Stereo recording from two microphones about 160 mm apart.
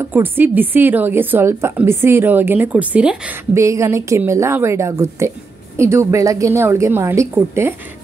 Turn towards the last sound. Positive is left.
turn(degrees=-15)  # may be behind; listen again after turning